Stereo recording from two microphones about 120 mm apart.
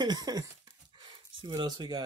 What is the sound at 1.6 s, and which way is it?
Speech, 40° right (ahead or behind).